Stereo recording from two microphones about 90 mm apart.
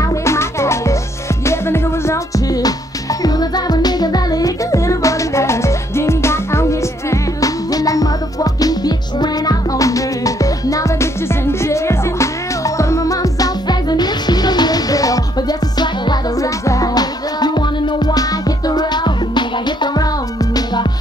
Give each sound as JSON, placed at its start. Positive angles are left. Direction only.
{"t": 0.2, "sound": "music", "side_deg": 30}